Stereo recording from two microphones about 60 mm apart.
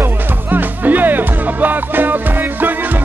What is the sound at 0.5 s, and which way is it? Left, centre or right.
Music, right.